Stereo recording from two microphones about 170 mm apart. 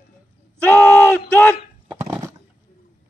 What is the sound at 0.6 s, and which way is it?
Speech, 10° left (ahead or behind).